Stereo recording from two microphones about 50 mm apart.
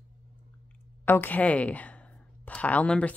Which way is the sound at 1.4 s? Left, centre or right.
Left.